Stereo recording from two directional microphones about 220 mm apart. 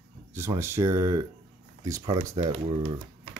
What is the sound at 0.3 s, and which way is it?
Speech, 10° right (ahead or behind).